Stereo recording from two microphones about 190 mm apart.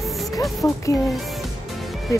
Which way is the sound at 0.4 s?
Centre (ahead or behind).